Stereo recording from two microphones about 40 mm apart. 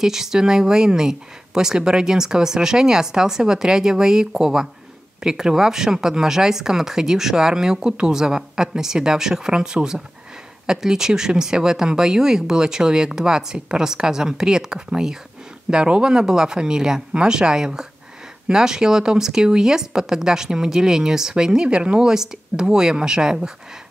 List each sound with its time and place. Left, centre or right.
0.0 s speech: centre